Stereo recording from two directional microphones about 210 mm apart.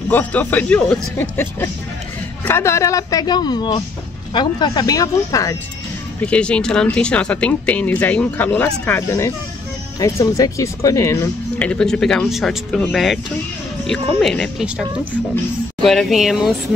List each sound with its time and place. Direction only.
0.1 s speech: 5° left (ahead or behind)
6.2 s speech: 5° left (ahead or behind)